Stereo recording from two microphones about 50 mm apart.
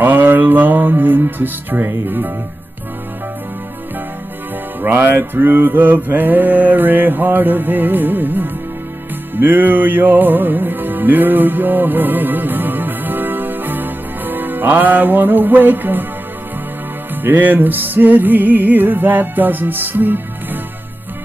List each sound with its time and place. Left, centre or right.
0.0 s music: right
4.8 s mantra: right
9.3 s music: right
17.1 s mantra: right